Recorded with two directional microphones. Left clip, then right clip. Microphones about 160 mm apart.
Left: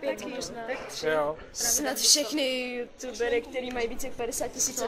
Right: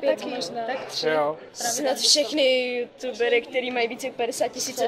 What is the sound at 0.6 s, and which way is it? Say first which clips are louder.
Speech: right 4 dB; 15° right (ahead or behind).